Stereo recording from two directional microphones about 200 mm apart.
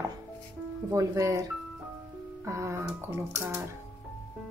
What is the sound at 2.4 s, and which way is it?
A woman's voice, 15° right (ahead or behind).